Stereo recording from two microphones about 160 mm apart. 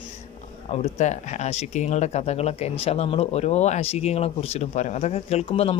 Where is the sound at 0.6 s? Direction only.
45° left (ahead or behind).